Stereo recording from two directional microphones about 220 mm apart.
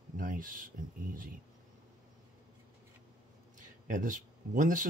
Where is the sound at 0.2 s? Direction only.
40° right (ahead or behind).